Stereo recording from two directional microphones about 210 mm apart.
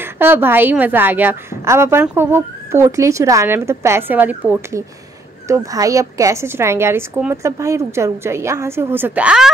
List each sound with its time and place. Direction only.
0.0 s a woman's voice: 10° right (ahead or behind)